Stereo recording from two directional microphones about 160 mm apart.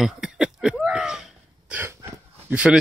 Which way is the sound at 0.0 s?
5° right (ahead or behind).